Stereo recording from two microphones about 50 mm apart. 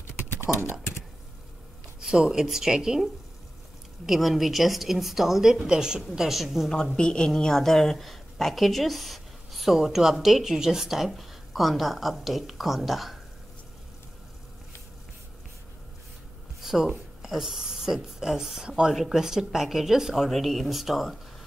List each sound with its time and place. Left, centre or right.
0.6 s speech: left
2.0 s a woman's voice: centre
6.1 s a woman's voice: centre
7.0 s a woman's voice: centre
16.6 s a woman's voice: centre